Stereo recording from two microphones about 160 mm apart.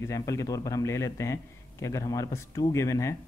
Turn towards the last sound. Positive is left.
turn(degrees=20)  # may be behind; listen again after turning